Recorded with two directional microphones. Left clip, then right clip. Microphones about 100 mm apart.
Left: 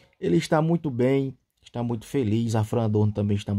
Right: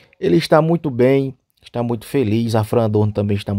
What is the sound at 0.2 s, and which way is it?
Speech, 45° right (ahead or behind).